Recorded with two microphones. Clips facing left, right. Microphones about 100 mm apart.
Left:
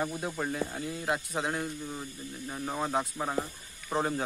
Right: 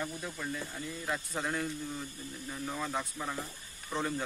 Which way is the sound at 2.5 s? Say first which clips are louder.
Left 5 dB; 35° left (ahead or behind).